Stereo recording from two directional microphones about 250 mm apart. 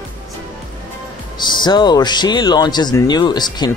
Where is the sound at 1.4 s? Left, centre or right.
Centre.